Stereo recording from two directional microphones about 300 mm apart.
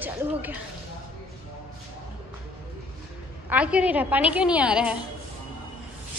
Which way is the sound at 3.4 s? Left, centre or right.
Centre.